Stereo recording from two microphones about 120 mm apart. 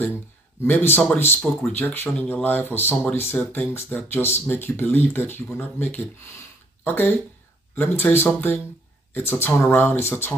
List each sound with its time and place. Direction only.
0.7 s speech: 15° left (ahead or behind)